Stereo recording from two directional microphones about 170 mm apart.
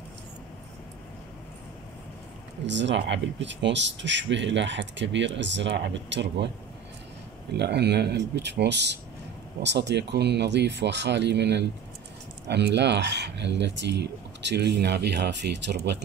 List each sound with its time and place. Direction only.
2.6 s speech: 90° right
7.5 s speech: 80° right